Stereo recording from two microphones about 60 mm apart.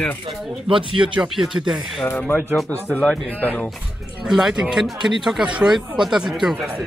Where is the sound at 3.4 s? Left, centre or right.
Left.